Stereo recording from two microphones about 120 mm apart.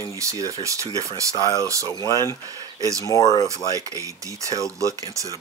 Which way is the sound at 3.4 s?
30° right (ahead or behind).